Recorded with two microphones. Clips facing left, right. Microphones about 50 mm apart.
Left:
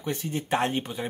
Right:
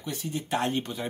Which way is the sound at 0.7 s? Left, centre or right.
Centre.